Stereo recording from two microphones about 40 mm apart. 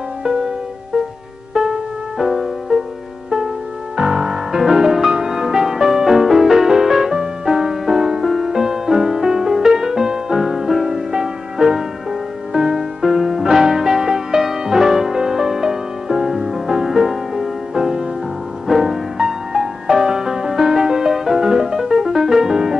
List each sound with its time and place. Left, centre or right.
0.9 s music: right
3.9 s music: centre